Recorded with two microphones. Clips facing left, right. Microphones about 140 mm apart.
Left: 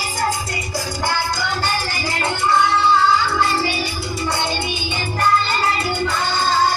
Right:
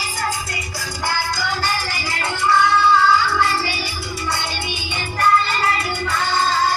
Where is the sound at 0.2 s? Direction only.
25° left (ahead or behind).